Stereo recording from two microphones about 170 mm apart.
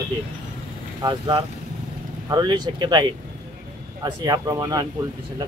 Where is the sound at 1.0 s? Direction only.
25° right (ahead or behind).